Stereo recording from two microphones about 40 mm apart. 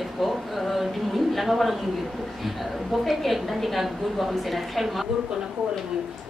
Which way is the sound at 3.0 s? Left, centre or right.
Centre.